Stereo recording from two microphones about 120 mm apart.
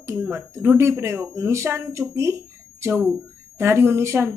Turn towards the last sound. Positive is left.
turn(degrees=-20)  # may be behind; listen again after turning